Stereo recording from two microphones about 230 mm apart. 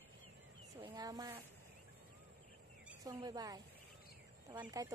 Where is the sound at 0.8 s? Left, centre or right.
Centre.